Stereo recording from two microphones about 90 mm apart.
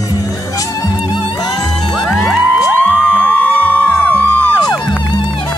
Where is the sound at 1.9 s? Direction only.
5° left (ahead or behind).